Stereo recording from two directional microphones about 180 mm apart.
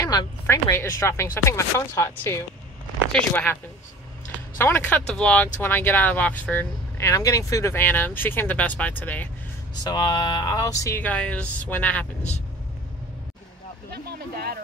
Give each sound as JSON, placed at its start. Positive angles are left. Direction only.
{"t": 0.0, "sound": "speech", "side_deg": 20}
{"t": 4.6, "sound": "speech", "side_deg": 10}
{"t": 9.8, "sound": "speech", "side_deg": 25}
{"t": 13.9, "sound": "a sound", "side_deg": -60}